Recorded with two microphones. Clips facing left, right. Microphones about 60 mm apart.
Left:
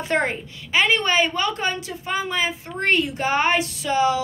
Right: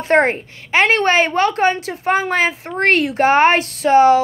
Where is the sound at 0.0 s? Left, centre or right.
Right.